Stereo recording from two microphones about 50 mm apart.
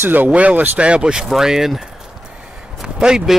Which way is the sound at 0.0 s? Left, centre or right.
Right.